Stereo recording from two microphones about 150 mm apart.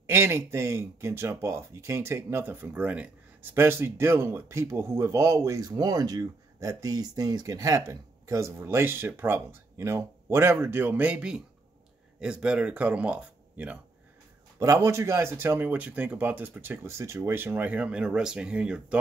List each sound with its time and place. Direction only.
0.0 s speech: 15° right (ahead or behind)
14.6 s speech: 20° right (ahead or behind)